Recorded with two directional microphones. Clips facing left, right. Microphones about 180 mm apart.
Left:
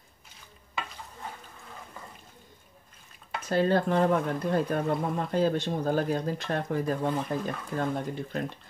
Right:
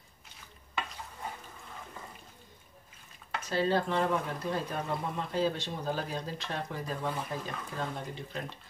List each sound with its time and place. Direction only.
3.4 s speech: 55° left (ahead or behind)